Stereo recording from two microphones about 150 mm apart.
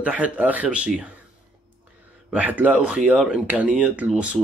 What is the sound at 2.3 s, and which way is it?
Speech, 10° right (ahead or behind).